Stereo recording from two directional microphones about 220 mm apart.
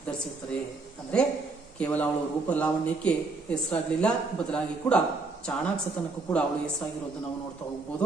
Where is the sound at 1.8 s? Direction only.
5° left (ahead or behind).